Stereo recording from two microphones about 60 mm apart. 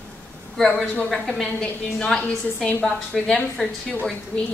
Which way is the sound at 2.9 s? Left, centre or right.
Centre.